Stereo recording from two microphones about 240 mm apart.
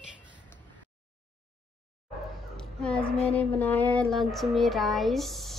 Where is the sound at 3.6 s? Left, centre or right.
Centre.